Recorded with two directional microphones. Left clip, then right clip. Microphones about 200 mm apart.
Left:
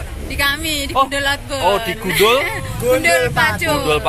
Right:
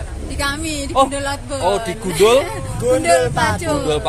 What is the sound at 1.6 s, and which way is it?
Speech, 5° left (ahead or behind).